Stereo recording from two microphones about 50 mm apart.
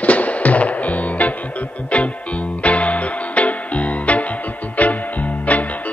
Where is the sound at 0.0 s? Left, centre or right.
Left.